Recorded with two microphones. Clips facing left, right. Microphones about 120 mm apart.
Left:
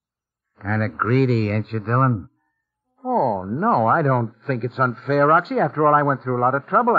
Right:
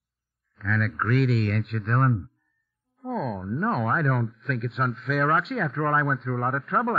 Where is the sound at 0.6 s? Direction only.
45° left (ahead or behind).